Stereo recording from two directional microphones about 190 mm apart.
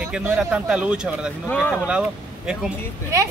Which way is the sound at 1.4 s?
10° left (ahead or behind).